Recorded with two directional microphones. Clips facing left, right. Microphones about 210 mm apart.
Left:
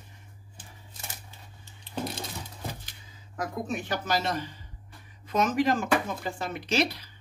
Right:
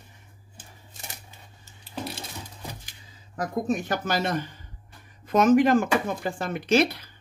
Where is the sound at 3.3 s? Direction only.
45° right (ahead or behind).